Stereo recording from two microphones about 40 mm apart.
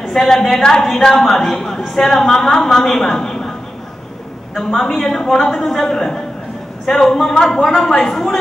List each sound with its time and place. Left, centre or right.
0.1 s a woman's voice: centre
4.7 s a woman's voice: centre